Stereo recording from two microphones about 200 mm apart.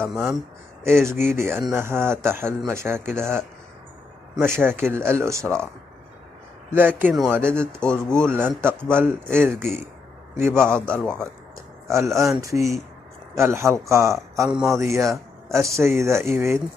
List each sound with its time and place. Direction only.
0.0 s speech: centre (ahead or behind)
1.0 s speech: 10° right (ahead or behind)
6.7 s speech: 10° right (ahead or behind)
7.8 s speech: 5° left (ahead or behind)
8.2 s a man's voice: 10° right (ahead or behind)
10.9 s speech: 5° left (ahead or behind)
11.9 s speech: 15° right (ahead or behind)
14.5 s speech: 5° right (ahead or behind)
15.4 s speech: 15° right (ahead or behind)